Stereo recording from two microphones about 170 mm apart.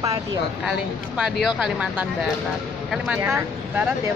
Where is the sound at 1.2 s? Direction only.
5° right (ahead or behind).